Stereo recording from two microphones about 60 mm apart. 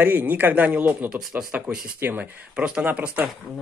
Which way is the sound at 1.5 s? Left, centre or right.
Centre.